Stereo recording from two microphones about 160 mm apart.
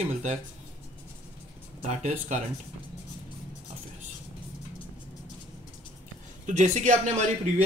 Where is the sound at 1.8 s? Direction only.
45° right (ahead or behind).